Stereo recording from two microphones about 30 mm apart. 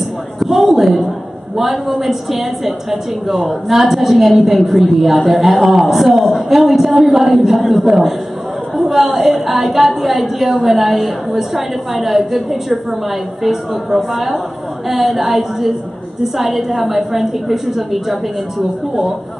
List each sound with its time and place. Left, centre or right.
0.5 s a woman's voice: centre
7.8 s a woman's voice: centre